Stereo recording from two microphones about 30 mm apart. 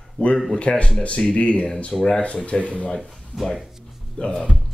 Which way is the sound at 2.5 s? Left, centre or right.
Left.